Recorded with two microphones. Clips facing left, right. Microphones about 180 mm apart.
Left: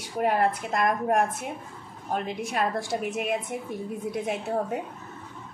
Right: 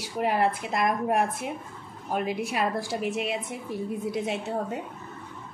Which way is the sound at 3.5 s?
55° left (ahead or behind).